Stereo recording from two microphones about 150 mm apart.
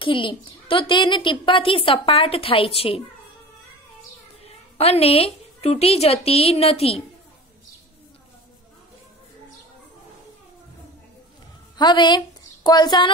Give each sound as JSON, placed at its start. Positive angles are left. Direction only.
{"t": 0.0, "sound": "a woman's voice", "side_deg": 35}
{"t": 4.7, "sound": "a woman's voice", "side_deg": 40}
{"t": 11.7, "sound": "a woman's voice", "side_deg": 30}